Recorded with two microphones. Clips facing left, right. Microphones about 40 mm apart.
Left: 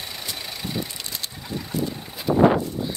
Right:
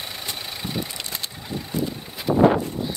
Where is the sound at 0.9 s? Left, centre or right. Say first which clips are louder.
Right 2 dB; right.